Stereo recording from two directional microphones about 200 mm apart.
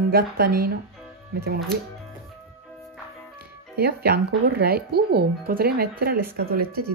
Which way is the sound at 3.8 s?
55° right (ahead or behind).